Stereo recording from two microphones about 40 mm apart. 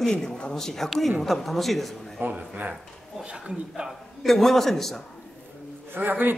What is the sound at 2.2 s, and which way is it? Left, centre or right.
Speech, right.